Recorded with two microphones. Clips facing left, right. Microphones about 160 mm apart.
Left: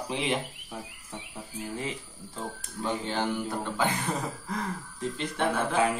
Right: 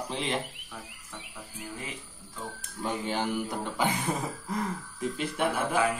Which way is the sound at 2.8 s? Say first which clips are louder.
Left 1 dB; 10° right (ahead or behind).